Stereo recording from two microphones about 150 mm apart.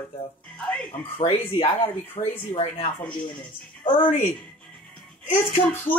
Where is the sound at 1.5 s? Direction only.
40° left (ahead or behind).